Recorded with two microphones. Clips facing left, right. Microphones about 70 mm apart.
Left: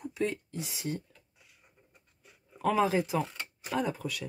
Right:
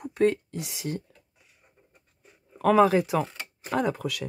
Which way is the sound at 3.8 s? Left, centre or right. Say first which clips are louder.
Right 5 dB; right.